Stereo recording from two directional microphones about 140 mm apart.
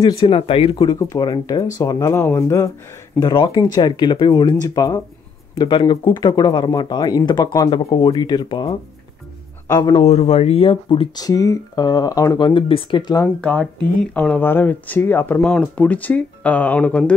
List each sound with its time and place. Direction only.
0.2 s speech: 40° left (ahead or behind); by 2.7 s 20° left (ahead or behind)
3.2 s a man's voice: 35° left (ahead or behind)
9.9 s speech: 50° left (ahead or behind); by 13.3 s 30° left (ahead or behind)
13.4 s speech: 10° left (ahead or behind)